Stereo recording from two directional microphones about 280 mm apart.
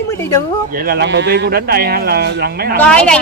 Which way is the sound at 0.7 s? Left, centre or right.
Right.